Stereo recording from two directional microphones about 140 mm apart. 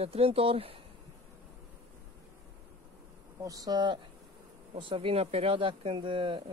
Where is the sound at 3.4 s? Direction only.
25° right (ahead or behind).